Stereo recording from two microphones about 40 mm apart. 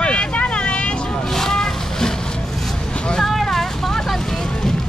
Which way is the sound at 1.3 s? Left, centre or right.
Centre.